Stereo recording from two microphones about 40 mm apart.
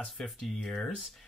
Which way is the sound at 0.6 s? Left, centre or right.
Centre.